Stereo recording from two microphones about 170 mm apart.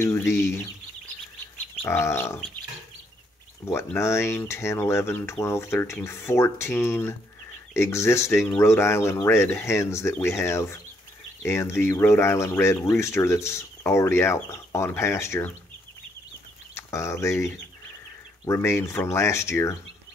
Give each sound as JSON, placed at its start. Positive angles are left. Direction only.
{"t": 0.0, "sound": "speech", "side_deg": 15}
{"t": 1.9, "sound": "speech", "side_deg": 15}
{"t": 3.6, "sound": "speech", "side_deg": 15}
{"t": 16.7, "sound": "speech", "side_deg": 15}